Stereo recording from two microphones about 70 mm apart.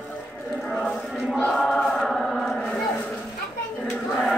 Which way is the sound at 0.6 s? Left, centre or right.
Centre.